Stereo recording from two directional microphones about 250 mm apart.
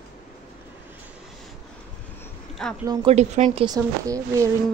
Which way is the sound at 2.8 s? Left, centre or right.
Right.